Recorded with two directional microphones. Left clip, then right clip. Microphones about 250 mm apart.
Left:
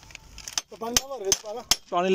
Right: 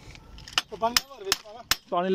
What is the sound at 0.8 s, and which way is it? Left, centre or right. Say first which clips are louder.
Speech: left 2 dB; left.